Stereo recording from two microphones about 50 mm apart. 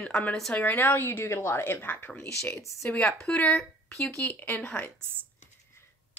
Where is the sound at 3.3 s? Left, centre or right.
Left.